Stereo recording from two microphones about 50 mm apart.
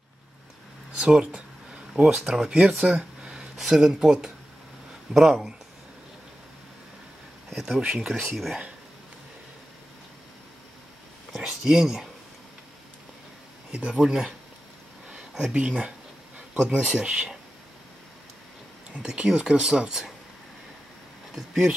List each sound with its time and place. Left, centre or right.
0.9 s a sound: centre
2.1 s speech: centre
2.9 s a sound: centre
3.5 s speech: centre
8.0 s speech: centre
11.4 s speech: centre
13.7 s speech: right
15.0 s a sound: centre
15.5 s speech: right
19.0 s speech: centre
21.4 s speech: centre